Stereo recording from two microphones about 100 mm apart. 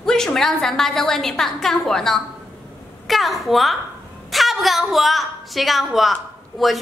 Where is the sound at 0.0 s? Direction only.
5° left (ahead or behind).